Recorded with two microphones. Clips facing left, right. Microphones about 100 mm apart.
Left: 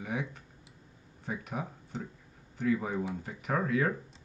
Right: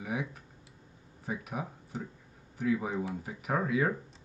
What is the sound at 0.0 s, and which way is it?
Tick-tock, 5° right (ahead or behind).